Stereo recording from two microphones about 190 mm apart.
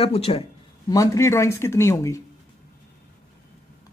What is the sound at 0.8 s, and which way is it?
Speech, 15° left (ahead or behind).